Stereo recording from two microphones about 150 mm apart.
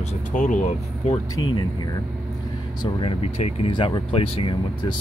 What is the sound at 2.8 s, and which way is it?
Speech, 35° left (ahead or behind).